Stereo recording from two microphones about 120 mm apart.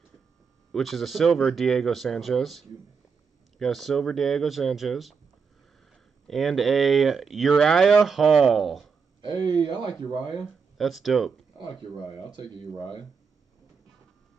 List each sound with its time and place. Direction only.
0.7 s speech: centre (ahead or behind)
6.2 s speech: centre (ahead or behind)
9.2 s speech: 40° right (ahead or behind)
10.8 s speech: centre (ahead or behind)
12.3 s speech: 40° right (ahead or behind)